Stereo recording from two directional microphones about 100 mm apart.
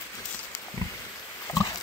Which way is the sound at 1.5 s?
30° left (ahead or behind).